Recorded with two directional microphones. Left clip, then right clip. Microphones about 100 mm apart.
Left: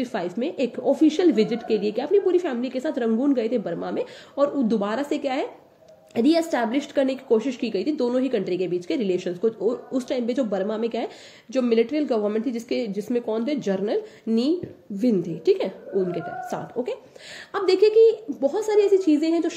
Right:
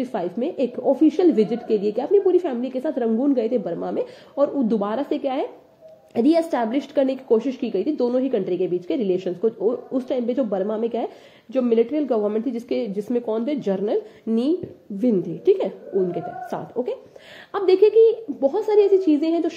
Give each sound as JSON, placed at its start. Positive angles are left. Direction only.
{"t": 0.0, "sound": "a woman's voice", "side_deg": -35}
{"t": 17.5, "sound": "a woman's voice", "side_deg": -20}